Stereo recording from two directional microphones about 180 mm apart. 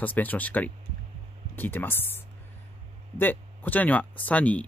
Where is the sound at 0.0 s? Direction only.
10° left (ahead or behind).